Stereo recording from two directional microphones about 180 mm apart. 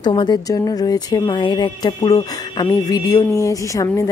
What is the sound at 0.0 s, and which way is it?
A woman's voice, 25° left (ahead or behind).